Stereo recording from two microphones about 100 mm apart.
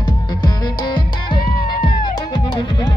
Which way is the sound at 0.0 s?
45° left (ahead or behind).